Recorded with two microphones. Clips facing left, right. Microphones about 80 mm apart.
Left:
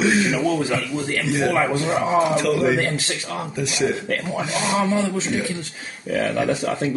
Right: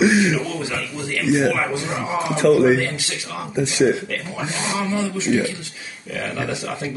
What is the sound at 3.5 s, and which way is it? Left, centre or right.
Speech, right.